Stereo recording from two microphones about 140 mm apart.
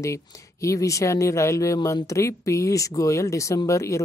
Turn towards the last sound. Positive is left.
turn(degrees=20)  # may be behind; listen again after turning